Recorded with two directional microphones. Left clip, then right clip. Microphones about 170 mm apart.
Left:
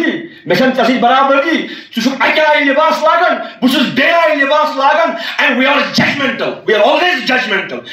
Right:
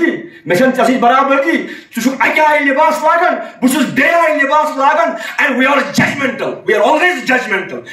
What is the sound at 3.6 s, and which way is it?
Speech, 30° right (ahead or behind).